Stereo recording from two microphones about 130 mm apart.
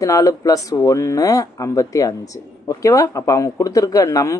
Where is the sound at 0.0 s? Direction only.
25° left (ahead or behind).